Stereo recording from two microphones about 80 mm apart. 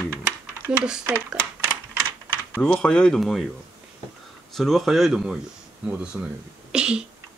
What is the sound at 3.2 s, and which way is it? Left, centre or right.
Speech, centre.